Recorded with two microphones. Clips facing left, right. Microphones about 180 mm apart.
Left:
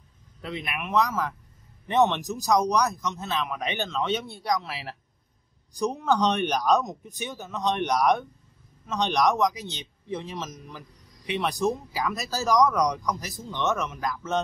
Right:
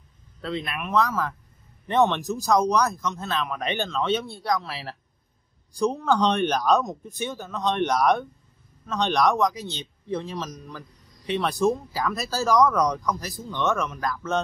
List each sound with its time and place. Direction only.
0.4 s speech: 15° left (ahead or behind)